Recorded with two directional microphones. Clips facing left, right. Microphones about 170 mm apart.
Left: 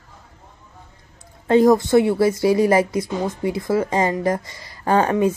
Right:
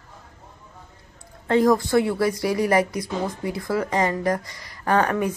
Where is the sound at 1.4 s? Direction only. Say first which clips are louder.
Left 4 dB; 25° left (ahead or behind).